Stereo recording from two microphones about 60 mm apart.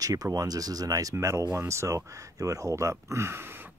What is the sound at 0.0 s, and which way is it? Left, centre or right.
Speech, right.